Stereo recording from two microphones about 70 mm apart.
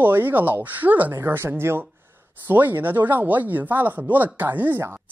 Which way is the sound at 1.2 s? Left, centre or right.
Right.